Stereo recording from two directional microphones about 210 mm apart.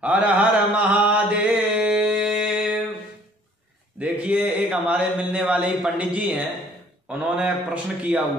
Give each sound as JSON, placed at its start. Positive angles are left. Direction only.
{"t": 0.0, "sound": "mantra", "side_deg": -5}
{"t": 4.0, "sound": "a man's voice", "side_deg": -5}